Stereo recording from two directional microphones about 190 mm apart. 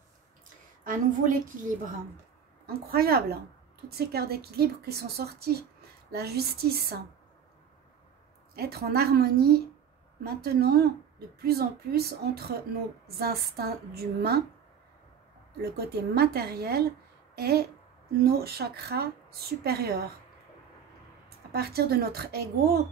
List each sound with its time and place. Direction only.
0.8 s a woman's voice: 45° right (ahead or behind)
8.5 s a woman's voice: 55° right (ahead or behind)
16.0 s a woman's voice: 55° right (ahead or behind)
21.5 s a woman's voice: 55° right (ahead or behind)